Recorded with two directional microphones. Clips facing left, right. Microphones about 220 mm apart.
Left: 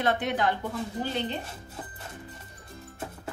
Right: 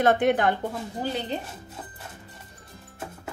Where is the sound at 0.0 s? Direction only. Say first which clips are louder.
Right 6 dB; 50° right (ahead or behind).